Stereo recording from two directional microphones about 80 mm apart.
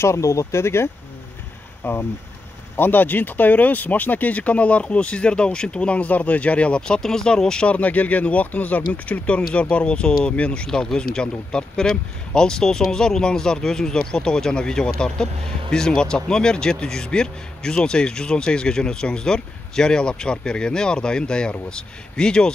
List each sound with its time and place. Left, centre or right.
0.0 s speech: left; by 22.5 s centre